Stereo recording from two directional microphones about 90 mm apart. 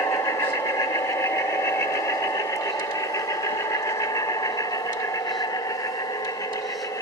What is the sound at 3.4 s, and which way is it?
Sewing machine, 40° left (ahead or behind).